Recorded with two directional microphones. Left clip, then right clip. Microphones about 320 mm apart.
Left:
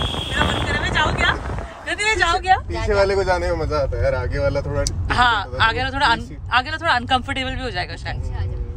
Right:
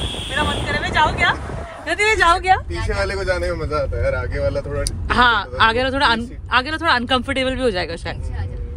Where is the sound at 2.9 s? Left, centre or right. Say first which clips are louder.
Left 4 dB; left.